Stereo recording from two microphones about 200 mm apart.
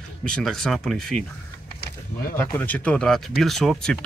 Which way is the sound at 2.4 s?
10° left (ahead or behind).